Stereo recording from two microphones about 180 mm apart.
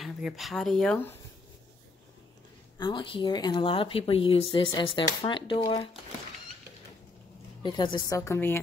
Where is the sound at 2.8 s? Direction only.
25° left (ahead or behind).